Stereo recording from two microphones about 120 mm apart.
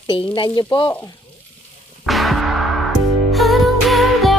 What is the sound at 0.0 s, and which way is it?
Speech, 40° left (ahead or behind).